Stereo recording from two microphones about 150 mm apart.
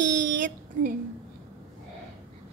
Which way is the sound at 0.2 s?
60° right (ahead or behind).